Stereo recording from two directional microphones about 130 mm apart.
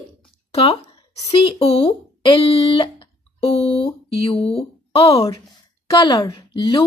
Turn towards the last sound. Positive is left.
turn(degrees=40)  # may be behind; listen again after turning